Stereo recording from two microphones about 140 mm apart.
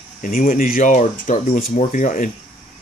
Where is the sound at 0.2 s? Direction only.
75° left (ahead or behind).